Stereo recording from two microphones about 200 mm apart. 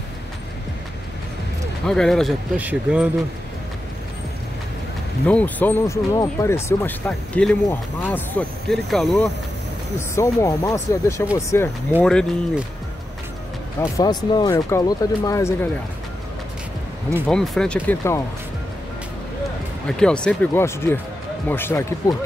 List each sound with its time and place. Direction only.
1.9 s speech: centre (ahead or behind)
5.2 s speech: 5° left (ahead or behind)
9.9 s speech: 15° left (ahead or behind)
13.7 s speech: 20° left (ahead or behind)
17.3 s speech: 5° left (ahead or behind)
19.9 s speech: 5° left (ahead or behind)